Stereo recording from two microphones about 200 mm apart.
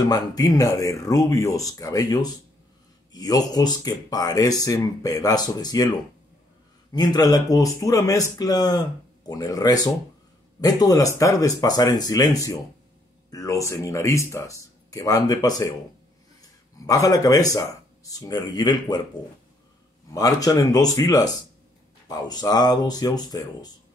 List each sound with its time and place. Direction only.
0.1 s speech: 20° left (ahead or behind)
6.9 s speech: 20° left (ahead or behind)
16.8 s speech: 15° left (ahead or behind)
20.1 s speech: 15° left (ahead or behind)